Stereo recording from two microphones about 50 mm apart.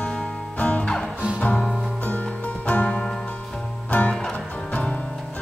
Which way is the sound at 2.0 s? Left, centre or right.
Left.